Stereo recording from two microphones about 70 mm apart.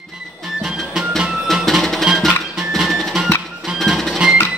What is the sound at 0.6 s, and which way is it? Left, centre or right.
Music, centre.